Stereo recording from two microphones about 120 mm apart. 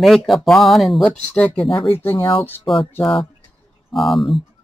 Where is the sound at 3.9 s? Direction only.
Centre (ahead or behind).